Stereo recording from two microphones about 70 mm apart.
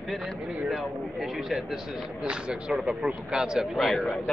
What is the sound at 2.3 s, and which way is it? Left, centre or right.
A man's voice, centre.